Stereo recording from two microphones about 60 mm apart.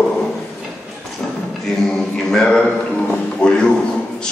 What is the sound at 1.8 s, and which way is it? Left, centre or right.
Speech, centre.